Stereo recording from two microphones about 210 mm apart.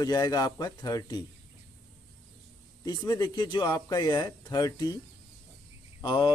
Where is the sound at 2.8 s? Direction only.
20° left (ahead or behind).